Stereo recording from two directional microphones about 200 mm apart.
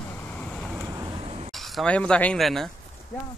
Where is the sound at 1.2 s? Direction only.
30° right (ahead or behind).